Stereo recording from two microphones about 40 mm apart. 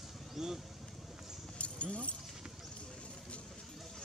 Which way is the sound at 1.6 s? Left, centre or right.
Left.